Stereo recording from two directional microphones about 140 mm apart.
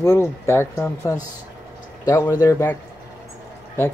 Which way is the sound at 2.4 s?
20° left (ahead or behind).